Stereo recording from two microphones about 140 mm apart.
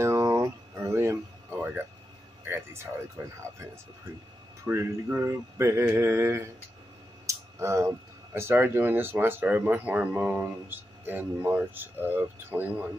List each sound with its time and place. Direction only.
0.0 s a sound: 20° right (ahead or behind)
2.4 s speech: 15° right (ahead or behind)
3.2 s mantra: 20° right (ahead or behind)
4.6 s mantra: 15° right (ahead or behind)
7.2 s speech: 20° right (ahead or behind)